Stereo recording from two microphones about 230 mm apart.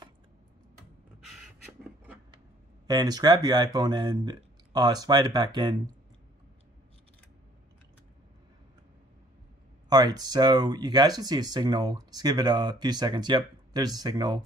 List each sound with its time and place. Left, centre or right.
2.9 s speech: centre
9.8 s speech: centre